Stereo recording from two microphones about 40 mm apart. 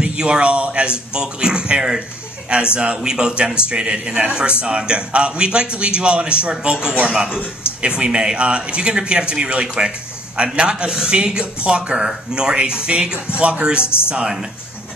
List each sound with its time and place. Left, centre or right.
0.0 s a man's voice: right
1.8 s speech: centre
2.5 s a man's voice: right